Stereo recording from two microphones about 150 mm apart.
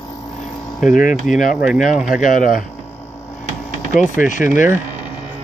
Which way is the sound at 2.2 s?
65° left (ahead or behind).